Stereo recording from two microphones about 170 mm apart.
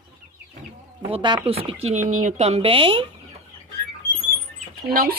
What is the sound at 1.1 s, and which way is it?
Speech, 30° right (ahead or behind).